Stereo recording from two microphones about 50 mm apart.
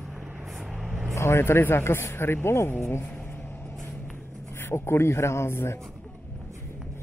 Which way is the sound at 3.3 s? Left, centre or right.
Left.